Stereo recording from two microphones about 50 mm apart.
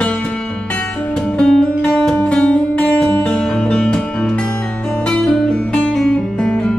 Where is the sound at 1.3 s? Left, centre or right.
Centre.